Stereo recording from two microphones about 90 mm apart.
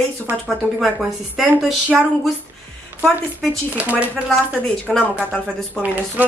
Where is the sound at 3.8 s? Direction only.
15° right (ahead or behind).